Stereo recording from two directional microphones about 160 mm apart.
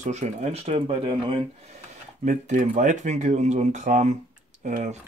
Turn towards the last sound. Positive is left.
turn(degrees=-50)  # may be behind; listen again after turning